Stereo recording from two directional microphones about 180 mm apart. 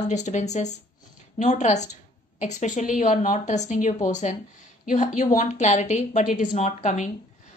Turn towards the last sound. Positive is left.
turn(degrees=40)  # may be behind; listen again after turning